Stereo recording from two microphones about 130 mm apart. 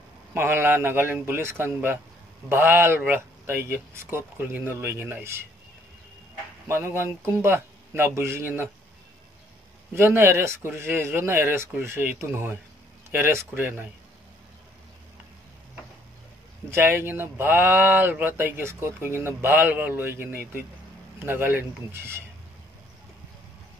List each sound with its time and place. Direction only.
0.3 s speech: 20° right (ahead or behind)
6.7 s speech: 20° right (ahead or behind)
9.9 s speech: 20° right (ahead or behind)
16.7 s speech: 20° right (ahead or behind)